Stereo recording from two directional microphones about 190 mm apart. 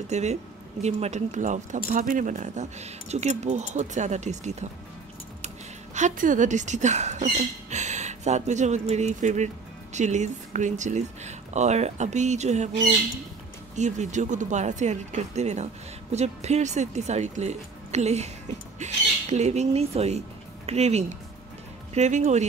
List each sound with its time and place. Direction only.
0.1 s speech: 35° right (ahead or behind)
5.9 s speech: 40° right (ahead or behind)
13.7 s speech: 40° right (ahead or behind)